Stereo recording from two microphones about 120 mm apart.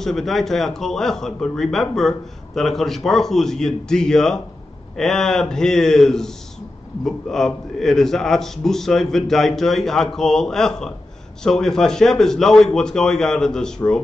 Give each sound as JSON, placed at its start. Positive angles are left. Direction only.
{"t": 0.0, "sound": "speech", "side_deg": 0}